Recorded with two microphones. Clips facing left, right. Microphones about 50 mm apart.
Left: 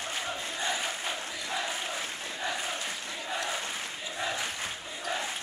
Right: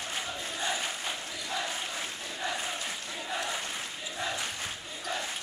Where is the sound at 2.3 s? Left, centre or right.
Centre.